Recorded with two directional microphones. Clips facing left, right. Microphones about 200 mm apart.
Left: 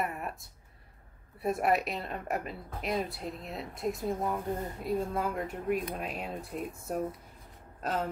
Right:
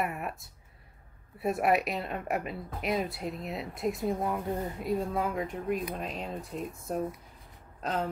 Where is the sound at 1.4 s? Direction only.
Centre (ahead or behind).